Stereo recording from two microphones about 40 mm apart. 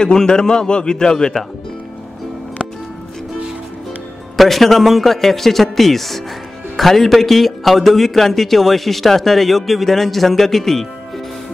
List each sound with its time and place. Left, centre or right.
0.0 s a man's voice: centre
4.4 s a man's voice: centre